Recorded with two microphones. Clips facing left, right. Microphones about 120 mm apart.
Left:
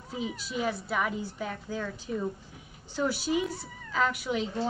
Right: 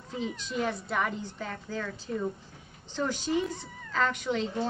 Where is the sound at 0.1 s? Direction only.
5° left (ahead or behind).